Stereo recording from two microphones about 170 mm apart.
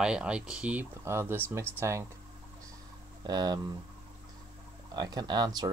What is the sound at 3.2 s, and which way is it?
Speech, 25° right (ahead or behind).